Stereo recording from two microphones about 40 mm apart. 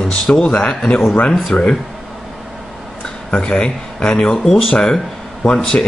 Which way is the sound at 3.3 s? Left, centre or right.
Left.